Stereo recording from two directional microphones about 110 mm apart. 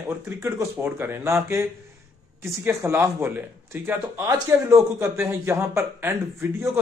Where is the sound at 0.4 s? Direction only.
20° right (ahead or behind).